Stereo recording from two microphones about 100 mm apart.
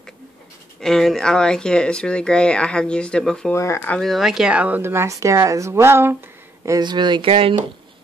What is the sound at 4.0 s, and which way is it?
A woman's voice, centre (ahead or behind).